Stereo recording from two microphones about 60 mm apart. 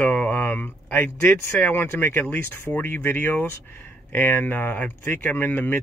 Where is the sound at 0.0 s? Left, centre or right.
Left.